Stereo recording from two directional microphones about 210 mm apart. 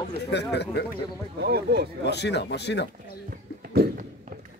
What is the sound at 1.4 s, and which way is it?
Speech, 50° right (ahead or behind).